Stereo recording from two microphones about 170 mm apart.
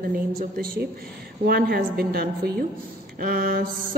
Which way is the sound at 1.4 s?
65° right (ahead or behind).